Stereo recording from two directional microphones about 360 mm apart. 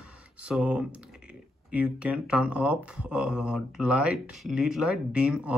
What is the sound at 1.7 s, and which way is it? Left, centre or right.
Speech, centre.